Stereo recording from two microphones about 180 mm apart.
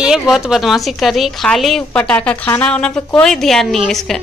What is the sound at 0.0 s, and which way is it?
A woman's voice, 5° right (ahead or behind).